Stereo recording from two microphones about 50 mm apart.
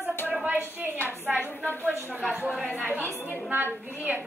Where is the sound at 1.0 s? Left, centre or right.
Right.